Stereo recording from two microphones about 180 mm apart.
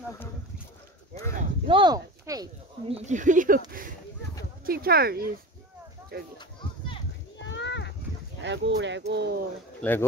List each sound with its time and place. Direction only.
1.7 s speech: 25° right (ahead or behind)
2.9 s speech: 45° right (ahead or behind); by 6.3 s 60° right (ahead or behind)
7.4 s a sound: 85° left
8.4 s speech: 80° right
9.8 s speech: 10° left (ahead or behind)